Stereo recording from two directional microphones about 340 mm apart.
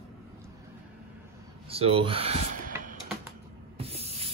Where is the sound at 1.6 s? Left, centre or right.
Centre.